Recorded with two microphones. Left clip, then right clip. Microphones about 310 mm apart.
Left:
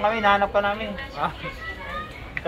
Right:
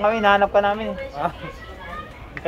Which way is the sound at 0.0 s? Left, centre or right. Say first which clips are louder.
Right 3 dB; right.